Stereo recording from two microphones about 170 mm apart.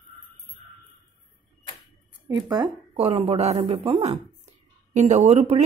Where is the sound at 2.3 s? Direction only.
25° right (ahead or behind).